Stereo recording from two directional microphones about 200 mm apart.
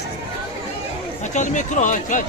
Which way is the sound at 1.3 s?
40° left (ahead or behind).